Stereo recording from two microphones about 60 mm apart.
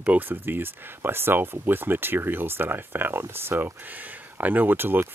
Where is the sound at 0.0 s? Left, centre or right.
Right.